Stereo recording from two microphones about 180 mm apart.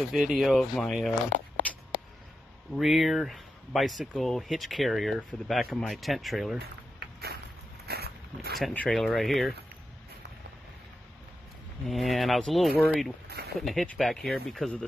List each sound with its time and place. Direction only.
0.1 s speech: centre (ahead or behind)
2.7 s speech: centre (ahead or behind)
7.0 s a sound: 60° right (ahead or behind)
8.5 s speech: centre (ahead or behind)
11.9 s speech: centre (ahead or behind)